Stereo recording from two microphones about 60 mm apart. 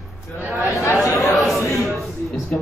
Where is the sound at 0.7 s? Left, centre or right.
Left.